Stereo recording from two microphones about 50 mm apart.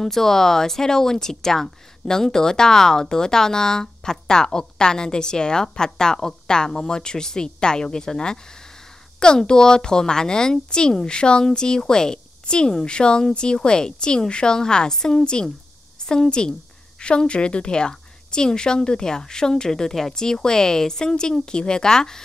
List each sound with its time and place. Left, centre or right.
0.0 s a woman's voice: centre